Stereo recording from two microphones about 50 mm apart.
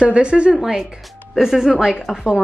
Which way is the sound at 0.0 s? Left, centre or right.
Right.